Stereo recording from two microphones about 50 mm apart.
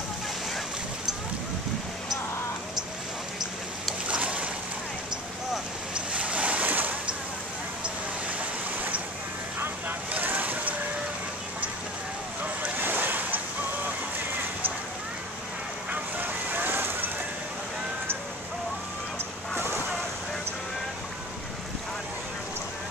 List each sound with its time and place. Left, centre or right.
4.1 s boat: right
5.9 s waves: right
9.6 s vehicle: right
12.7 s boat: right
15.9 s vehicle: right